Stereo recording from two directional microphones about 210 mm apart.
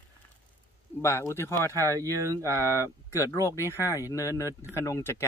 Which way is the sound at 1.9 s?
15° right (ahead or behind).